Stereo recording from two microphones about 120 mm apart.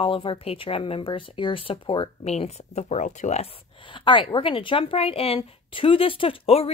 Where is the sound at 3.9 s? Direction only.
45° left (ahead or behind).